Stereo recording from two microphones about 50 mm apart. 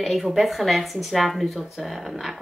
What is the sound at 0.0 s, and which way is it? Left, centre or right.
A woman's voice, centre.